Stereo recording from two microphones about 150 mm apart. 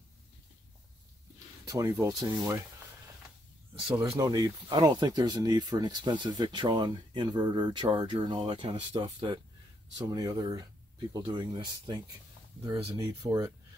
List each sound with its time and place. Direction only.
1.7 s speech: 20° right (ahead or behind)
4.2 s speech: 25° right (ahead or behind)